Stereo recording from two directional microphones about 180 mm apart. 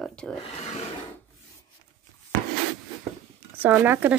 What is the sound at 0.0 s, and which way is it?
Rub, 5° left (ahead or behind).